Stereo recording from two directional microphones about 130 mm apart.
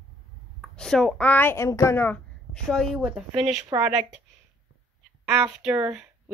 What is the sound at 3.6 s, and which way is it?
Speech, 20° right (ahead or behind).